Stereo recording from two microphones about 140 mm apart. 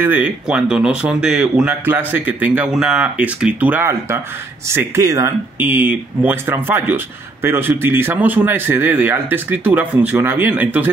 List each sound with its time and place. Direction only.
0.0 s speech: 10° right (ahead or behind)